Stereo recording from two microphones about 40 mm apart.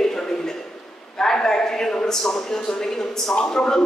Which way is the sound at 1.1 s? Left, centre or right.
Centre.